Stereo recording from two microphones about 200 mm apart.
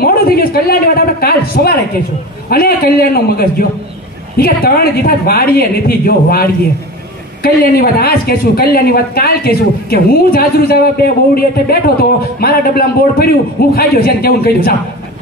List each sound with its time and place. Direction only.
0.0 s speech: 50° left (ahead or behind)